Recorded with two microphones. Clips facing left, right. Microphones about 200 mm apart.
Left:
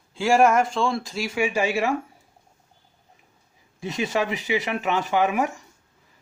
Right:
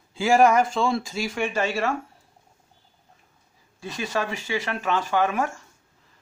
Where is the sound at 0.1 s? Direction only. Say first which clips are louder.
Even; centre (ahead or behind); by 2.0 s 15° left (ahead or behind).